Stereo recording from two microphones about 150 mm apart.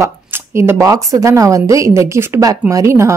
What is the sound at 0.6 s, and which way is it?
A woman's voice, 20° right (ahead or behind).